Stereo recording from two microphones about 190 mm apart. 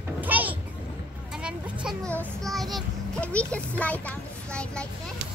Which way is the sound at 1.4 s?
5° right (ahead or behind).